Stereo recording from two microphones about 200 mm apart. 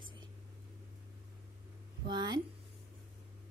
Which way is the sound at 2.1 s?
20° right (ahead or behind).